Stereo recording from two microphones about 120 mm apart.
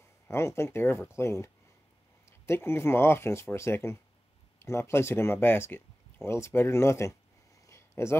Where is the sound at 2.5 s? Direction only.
20° left (ahead or behind).